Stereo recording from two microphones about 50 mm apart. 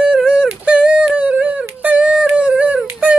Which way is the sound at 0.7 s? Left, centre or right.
Right.